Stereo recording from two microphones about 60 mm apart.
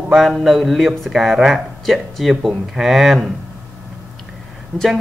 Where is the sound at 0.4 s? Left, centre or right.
Centre.